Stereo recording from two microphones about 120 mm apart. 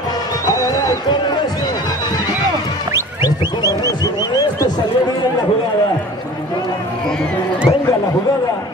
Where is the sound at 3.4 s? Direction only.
25° right (ahead or behind).